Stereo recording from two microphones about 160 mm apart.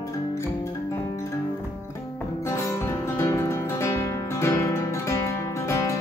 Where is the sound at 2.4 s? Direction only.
20° left (ahead or behind).